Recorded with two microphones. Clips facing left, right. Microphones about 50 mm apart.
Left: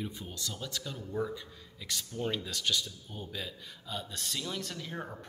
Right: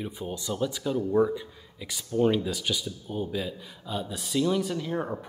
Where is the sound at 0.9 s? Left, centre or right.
Right.